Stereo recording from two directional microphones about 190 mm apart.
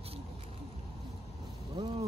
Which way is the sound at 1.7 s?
25° right (ahead or behind).